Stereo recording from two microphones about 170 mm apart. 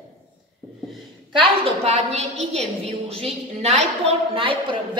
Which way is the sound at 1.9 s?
40° right (ahead or behind).